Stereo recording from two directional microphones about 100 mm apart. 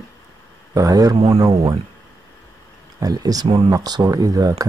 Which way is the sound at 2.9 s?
40° right (ahead or behind).